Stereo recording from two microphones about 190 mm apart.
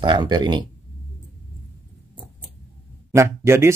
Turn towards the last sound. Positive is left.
turn(degrees=-15)  # may be behind; listen again after turning